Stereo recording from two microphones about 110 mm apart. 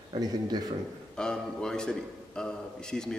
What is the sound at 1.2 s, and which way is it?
A man's voice, 5° left (ahead or behind).